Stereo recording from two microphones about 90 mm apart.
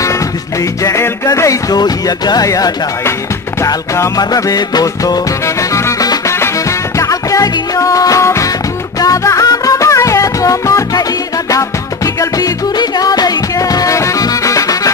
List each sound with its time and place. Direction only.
0.8 s speech: 35° left (ahead or behind)
4.2 s speech: 45° left (ahead or behind)
6.0 s music: 35° left (ahead or behind)
12.2 s music: 45° left (ahead or behind)